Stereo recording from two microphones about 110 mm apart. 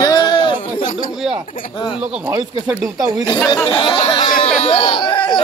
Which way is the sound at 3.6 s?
50° left (ahead or behind).